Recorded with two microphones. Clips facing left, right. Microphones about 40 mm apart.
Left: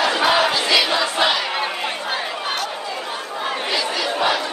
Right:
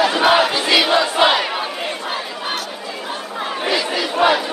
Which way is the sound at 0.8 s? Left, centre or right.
Right.